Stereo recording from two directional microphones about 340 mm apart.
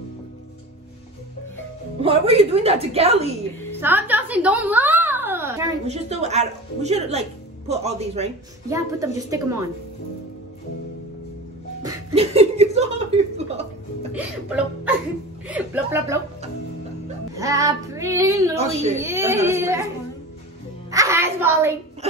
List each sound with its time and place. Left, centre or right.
2.0 s a woman's voice: centre
3.8 s a woman's voice: centre
11.8 s a woman's voice: centre
15.4 s a woman's voice: centre
17.4 s a woman's voice: centre
18.9 s a woman's voice: centre
20.9 s a woman's voice: centre